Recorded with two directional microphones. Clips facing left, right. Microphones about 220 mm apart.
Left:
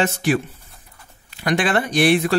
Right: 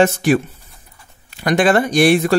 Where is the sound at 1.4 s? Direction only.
45° right (ahead or behind).